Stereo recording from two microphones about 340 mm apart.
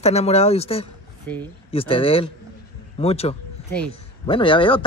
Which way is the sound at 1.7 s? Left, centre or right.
Centre.